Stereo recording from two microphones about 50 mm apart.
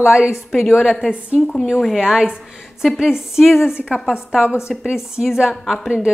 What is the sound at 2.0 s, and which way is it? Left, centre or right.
A woman's voice, centre.